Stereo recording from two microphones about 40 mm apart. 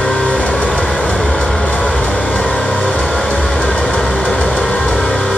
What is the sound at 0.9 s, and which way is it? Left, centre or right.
Vehicle, left.